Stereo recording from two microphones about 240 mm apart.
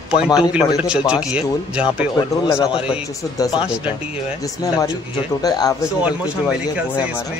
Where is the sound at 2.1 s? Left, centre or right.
Centre.